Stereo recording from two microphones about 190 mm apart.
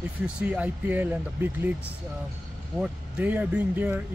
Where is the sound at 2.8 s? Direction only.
10° right (ahead or behind).